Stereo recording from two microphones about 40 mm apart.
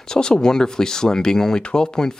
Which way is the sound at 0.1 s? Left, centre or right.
Centre.